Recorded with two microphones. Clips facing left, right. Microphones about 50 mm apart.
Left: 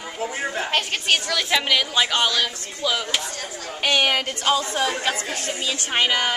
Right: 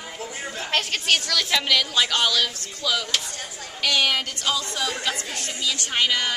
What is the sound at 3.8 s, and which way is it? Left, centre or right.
A woman's voice, left.